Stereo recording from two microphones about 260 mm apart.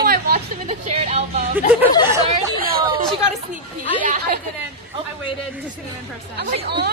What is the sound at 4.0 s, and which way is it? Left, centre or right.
Speech, right.